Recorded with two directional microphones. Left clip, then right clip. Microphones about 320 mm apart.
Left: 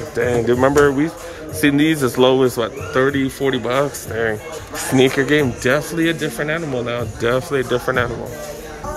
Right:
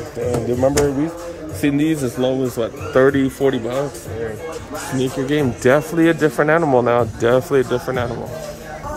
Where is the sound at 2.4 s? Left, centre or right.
Centre.